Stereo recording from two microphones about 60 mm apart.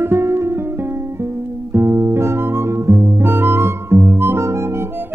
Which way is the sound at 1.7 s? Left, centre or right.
Right.